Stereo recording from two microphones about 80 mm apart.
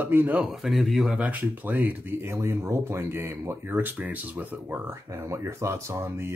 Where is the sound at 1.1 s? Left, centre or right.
Centre.